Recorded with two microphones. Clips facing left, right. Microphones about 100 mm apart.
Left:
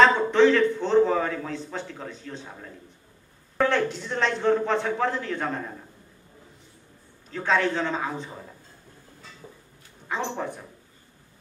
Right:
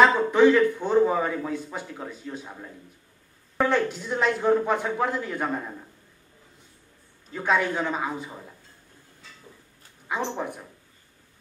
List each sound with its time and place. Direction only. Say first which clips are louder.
0.0 s speech: even; 10° right (ahead or behind)
7.3 s speech: even; 10° right (ahead or behind)
10.0 s speech: even; 10° right (ahead or behind)